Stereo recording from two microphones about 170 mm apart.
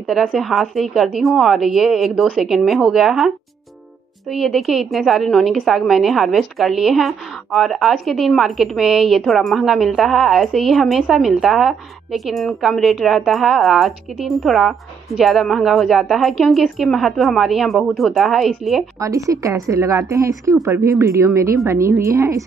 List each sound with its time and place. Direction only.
0.1 s a woman's voice: centre (ahead or behind)
4.3 s a woman's voice: centre (ahead or behind)
18.9 s a woman's voice: 20° right (ahead or behind)